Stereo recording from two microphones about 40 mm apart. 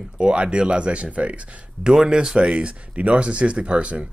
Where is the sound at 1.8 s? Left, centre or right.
Centre.